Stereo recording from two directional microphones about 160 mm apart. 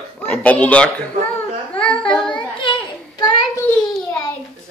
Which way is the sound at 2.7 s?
30° left (ahead or behind).